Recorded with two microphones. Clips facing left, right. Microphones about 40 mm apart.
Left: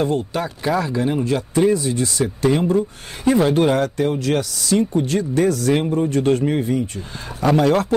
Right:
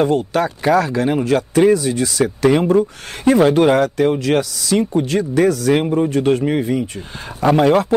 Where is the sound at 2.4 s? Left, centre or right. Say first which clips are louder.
Right 4 dB; right.